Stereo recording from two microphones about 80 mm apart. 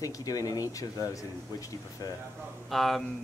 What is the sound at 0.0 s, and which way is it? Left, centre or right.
Speech, left.